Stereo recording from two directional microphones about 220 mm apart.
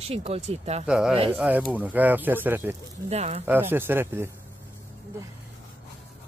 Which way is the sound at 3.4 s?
10° right (ahead or behind).